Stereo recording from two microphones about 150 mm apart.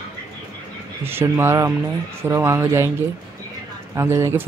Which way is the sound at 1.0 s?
15° right (ahead or behind).